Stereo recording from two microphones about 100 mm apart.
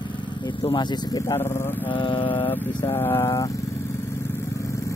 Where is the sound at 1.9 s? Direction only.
55° left (ahead or behind).